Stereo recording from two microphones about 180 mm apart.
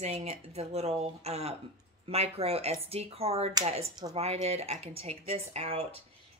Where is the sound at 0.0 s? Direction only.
40° right (ahead or behind).